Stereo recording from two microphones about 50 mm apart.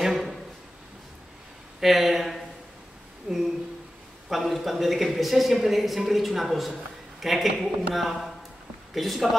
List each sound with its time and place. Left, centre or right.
0.0 s a sound: centre
1.8 s a woman's voice: centre
3.3 s speech: centre
4.3 s a woman's voice: centre